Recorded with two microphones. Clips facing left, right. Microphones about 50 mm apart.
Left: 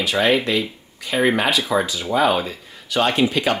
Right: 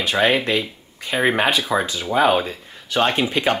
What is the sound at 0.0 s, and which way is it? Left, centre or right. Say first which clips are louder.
Speech: even; right.